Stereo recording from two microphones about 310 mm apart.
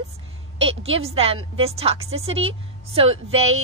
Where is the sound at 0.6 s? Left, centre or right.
Centre.